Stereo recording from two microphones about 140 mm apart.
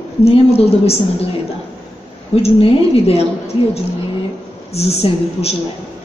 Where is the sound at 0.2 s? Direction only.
45° left (ahead or behind).